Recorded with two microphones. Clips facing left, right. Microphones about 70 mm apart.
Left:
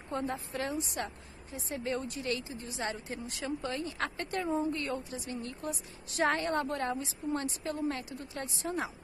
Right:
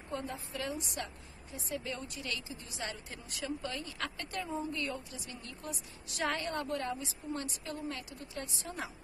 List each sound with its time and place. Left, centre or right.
0.1 s a woman's voice: left